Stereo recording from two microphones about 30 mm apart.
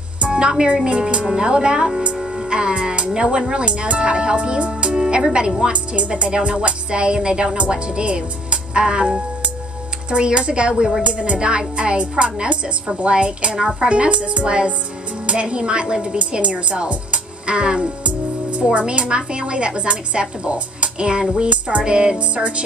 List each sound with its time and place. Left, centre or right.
0.3 s a woman's voice: right
3.5 s speech: right
4.0 s speech: right
5.7 s speech: right
11.0 s speech: right
11.3 s speech: right
16.9 s music: right
18.0 s speech: right
21.8 s speech: right